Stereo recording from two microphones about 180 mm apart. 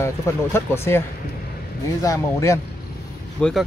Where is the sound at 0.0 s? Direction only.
15° left (ahead or behind).